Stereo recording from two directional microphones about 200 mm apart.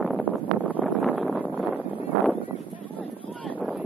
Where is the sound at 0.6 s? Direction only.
5° right (ahead or behind).